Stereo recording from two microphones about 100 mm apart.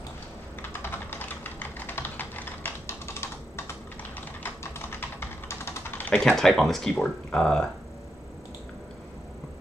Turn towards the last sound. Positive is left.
turn(degrees=5)  # may be behind; listen again after turning